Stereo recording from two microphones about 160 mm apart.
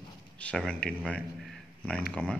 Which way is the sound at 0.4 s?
5° left (ahead or behind).